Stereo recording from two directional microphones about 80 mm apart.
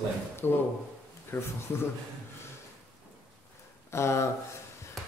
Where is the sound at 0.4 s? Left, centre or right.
Left.